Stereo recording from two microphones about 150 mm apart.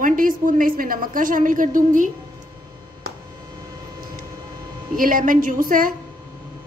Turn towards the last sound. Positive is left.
turn(degrees=-65)  # may be behind; listen again after turning